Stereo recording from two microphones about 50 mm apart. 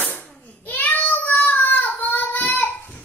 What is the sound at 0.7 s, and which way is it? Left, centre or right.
Child singing, left.